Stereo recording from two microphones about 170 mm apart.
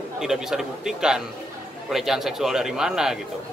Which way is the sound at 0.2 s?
5° right (ahead or behind).